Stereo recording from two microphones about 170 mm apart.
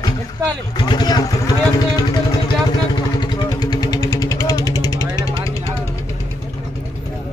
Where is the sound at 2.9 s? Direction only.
25° left (ahead or behind).